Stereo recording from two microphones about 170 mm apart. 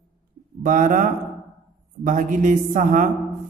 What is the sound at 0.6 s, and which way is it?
A woman's voice, 50° right (ahead or behind).